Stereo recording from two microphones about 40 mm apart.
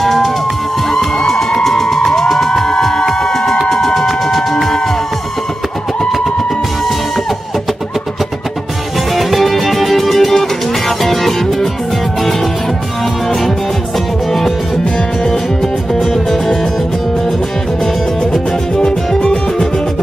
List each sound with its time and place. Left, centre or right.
0.0 s music: centre
9.1 s music: centre
13.0 s music: centre
18.8 s music: centre